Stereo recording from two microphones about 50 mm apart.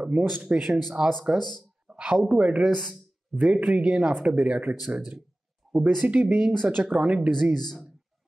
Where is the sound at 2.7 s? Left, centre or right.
Centre.